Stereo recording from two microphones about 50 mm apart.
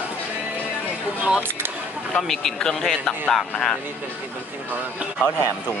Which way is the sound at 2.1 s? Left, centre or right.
Centre.